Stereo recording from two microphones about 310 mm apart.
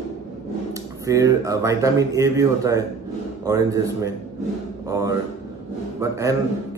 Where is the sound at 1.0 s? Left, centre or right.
Centre.